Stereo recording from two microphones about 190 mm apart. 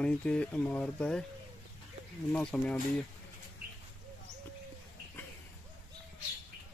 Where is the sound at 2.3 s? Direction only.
5° left (ahead or behind).